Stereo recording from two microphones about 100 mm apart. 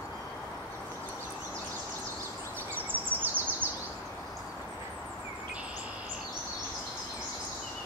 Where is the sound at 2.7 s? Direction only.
20° right (ahead or behind).